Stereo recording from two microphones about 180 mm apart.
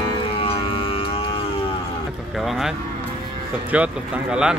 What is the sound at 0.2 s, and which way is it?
Music, 30° left (ahead or behind).